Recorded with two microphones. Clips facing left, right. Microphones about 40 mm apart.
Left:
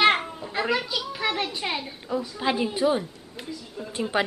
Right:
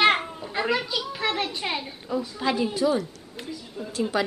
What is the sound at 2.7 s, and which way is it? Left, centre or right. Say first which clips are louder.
Speech: left 1 dB; left.